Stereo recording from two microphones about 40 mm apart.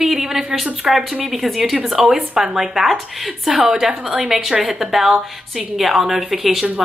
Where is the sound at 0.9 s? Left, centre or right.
Centre.